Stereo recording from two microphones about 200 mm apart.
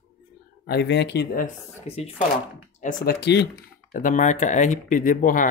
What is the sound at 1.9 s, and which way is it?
Speech, 35° left (ahead or behind).